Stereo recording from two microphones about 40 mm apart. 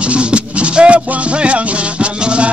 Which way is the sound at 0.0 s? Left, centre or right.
Right.